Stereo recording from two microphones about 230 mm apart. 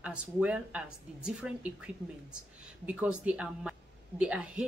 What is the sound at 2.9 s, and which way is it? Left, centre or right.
A woman's voice, centre.